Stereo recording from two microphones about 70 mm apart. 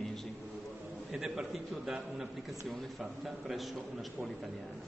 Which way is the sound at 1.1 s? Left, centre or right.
Centre.